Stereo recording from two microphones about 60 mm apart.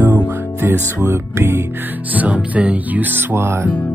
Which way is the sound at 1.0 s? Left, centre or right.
Right.